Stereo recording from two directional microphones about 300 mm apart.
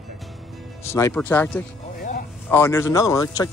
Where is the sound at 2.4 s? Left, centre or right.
Centre.